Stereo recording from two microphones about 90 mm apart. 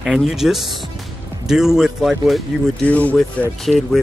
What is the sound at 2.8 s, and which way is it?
Speech, 15° left (ahead or behind).